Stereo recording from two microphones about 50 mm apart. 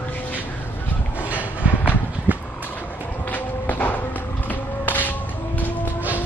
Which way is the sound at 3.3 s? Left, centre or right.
Left.